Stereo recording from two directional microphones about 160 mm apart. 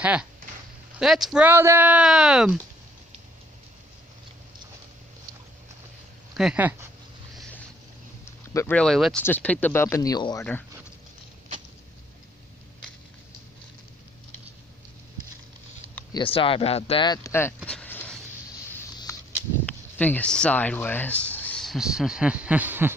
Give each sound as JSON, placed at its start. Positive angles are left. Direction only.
{"t": 0.0, "sound": "speech", "side_deg": -10}
{"t": 6.3, "sound": "speech", "side_deg": -5}
{"t": 8.5, "sound": "speech", "side_deg": 10}
{"t": 16.1, "sound": "speech", "side_deg": 35}
{"t": 17.6, "sound": "a sound", "side_deg": 10}
{"t": 19.6, "sound": "speech", "side_deg": 10}